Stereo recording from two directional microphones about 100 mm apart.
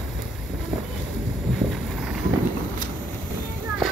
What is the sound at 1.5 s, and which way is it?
Vehicle, centre (ahead or behind).